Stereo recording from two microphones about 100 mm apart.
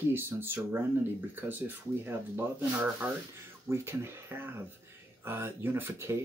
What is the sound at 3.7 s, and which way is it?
Speech, 25° right (ahead or behind).